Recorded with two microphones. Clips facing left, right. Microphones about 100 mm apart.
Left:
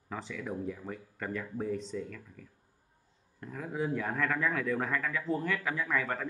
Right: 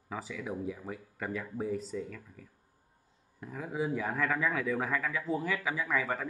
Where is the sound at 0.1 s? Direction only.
5° right (ahead or behind).